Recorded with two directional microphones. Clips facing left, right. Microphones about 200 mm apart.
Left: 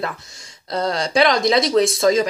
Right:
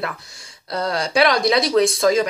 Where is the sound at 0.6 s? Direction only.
25° left (ahead or behind).